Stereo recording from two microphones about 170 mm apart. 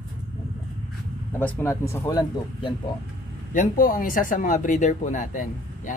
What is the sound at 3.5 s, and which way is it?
Speech, 50° left (ahead or behind).